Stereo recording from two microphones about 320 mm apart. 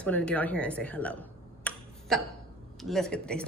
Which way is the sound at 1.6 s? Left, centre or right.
Centre.